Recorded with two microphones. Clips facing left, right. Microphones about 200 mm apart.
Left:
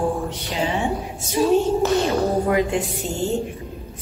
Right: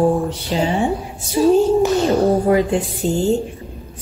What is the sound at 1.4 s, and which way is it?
Speech, 30° right (ahead or behind).